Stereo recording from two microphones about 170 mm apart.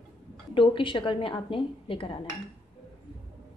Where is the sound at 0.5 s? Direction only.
30° left (ahead or behind).